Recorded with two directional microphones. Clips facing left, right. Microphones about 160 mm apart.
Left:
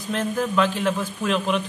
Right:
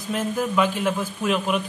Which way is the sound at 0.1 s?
10° right (ahead or behind).